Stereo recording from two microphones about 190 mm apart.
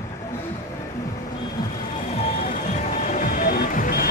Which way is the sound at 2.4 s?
40° left (ahead or behind).